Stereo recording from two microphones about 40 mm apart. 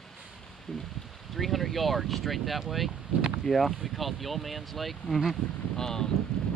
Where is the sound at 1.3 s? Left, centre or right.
Centre.